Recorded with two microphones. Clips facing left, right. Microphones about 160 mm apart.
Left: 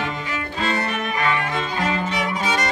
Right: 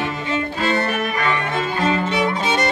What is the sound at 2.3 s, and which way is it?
Music, 25° right (ahead or behind).